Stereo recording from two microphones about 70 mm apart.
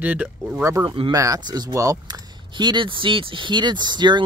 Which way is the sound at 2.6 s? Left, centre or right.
Right.